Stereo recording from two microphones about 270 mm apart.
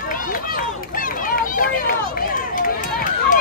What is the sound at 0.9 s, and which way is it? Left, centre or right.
Children playing, left.